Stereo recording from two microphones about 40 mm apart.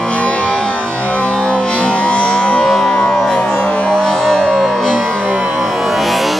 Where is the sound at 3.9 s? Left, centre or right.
Centre.